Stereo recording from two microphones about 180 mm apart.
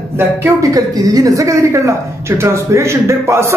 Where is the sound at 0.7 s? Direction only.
20° right (ahead or behind).